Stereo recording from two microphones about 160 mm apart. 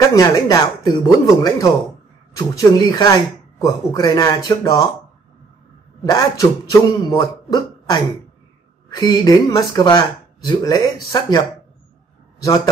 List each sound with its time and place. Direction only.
0.1 s speech: 25° left (ahead or behind)
6.0 s speech: 20° left (ahead or behind)